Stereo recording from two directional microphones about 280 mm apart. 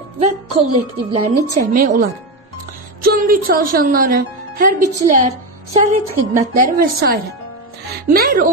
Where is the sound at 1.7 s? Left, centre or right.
Right.